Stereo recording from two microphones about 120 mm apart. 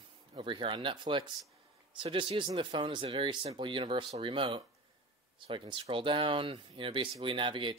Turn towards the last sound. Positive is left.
turn(degrees=-45)  # may be behind; listen again after turning